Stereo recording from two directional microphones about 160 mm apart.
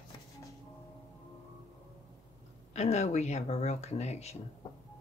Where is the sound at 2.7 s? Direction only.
45° left (ahead or behind).